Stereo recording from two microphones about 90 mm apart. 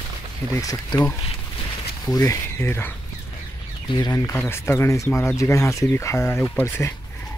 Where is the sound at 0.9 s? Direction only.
50° left (ahead or behind).